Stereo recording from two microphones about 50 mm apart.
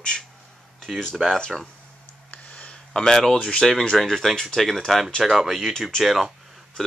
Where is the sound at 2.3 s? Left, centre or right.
Left.